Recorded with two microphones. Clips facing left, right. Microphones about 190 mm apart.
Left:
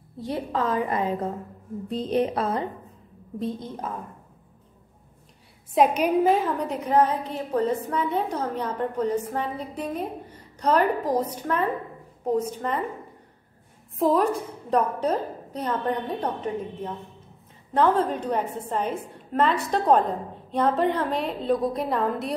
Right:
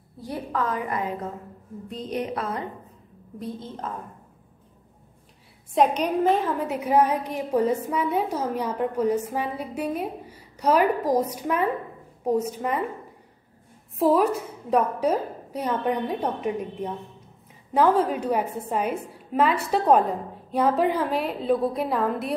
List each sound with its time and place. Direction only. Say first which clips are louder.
0.2 s a woman's voice: left 2 dB; 25° left (ahead or behind)
3.3 s a woman's voice: left 4 dB; 20° left (ahead or behind)
5.8 s a woman's voice: left 1 dB; 5° left (ahead or behind); by 12.8 s 10° right (ahead or behind)
13.9 s a woman's voice: right 1 dB; 5° right (ahead or behind)